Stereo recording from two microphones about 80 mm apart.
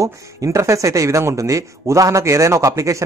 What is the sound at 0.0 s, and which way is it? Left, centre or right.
Speech, right.